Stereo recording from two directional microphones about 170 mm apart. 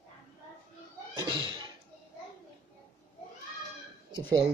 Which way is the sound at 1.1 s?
30° right (ahead or behind).